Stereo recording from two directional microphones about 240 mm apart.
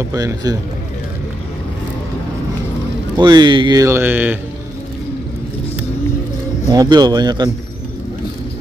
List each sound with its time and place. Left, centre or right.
0.1 s speech: centre
3.2 s speech: centre
6.7 s speech: centre